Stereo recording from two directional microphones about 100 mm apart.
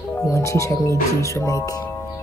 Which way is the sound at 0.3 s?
30° left (ahead or behind).